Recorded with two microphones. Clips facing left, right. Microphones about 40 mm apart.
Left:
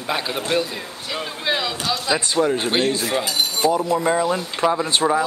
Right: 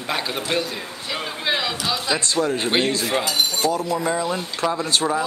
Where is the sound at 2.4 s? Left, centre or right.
Centre.